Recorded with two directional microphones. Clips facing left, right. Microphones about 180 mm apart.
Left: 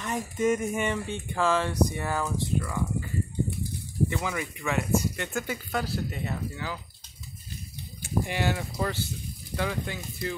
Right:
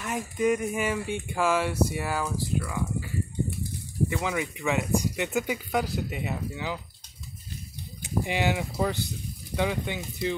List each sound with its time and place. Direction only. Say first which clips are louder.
0.0 s speech: even; centre (ahead or behind)
4.1 s speech: right 2 dB; 15° right (ahead or behind)
8.0 s speech: right 1 dB; 15° right (ahead or behind)